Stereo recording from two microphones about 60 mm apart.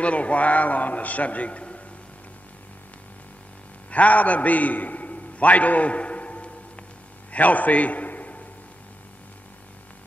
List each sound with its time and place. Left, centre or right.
0.0 s a man's voice: left
3.9 s a man's voice: left